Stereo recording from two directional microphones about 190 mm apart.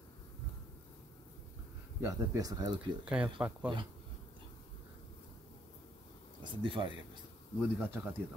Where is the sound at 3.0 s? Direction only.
5° right (ahead or behind).